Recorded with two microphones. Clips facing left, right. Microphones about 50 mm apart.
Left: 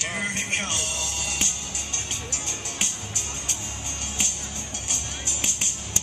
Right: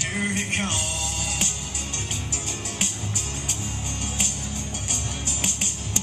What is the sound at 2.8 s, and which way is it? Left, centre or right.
Music, centre.